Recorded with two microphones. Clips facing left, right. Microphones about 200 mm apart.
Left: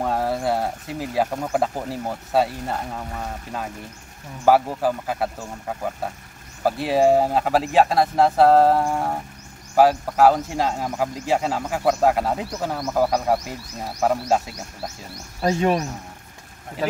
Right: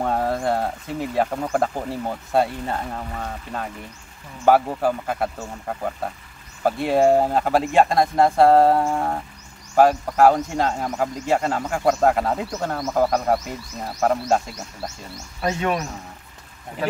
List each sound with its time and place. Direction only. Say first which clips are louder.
0.0 s speech: right 1 dB; 5° left (ahead or behind)
15.4 s a man's voice: left 3 dB; 35° left (ahead or behind)